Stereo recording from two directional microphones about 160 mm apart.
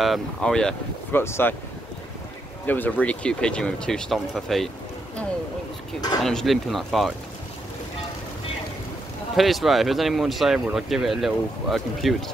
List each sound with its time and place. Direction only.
0.0 s speech: centre (ahead or behind)
1.2 s speech: 15° left (ahead or behind)
2.6 s speech: 10° left (ahead or behind)
5.9 s speech: 25° left (ahead or behind)
6.2 s speech: centre (ahead or behind)
9.3 s speech: centre (ahead or behind)